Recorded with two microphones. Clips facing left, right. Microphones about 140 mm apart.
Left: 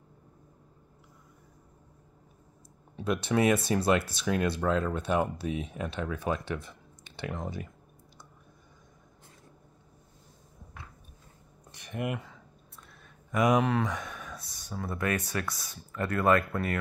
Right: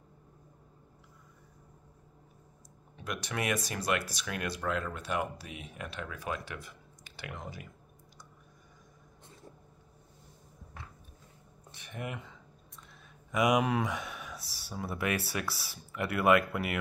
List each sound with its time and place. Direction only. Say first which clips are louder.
3.0 s speech: left 10 dB; 25° left (ahead or behind)
11.7 s a sound: left 6 dB; 10° left (ahead or behind)
13.5 s speech: left 3 dB; 15° right (ahead or behind)